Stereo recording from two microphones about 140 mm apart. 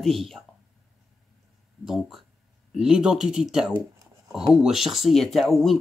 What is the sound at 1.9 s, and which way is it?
Speech, centre (ahead or behind).